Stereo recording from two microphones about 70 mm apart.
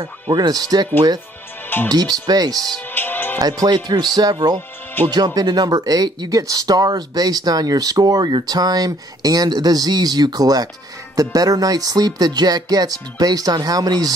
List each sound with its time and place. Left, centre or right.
0.0 s speech: right
1.9 s speech: right
2.9 s music: left
3.3 s speech: right
6.4 s speech: right